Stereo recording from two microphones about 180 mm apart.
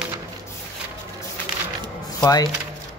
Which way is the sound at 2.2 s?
20° left (ahead or behind).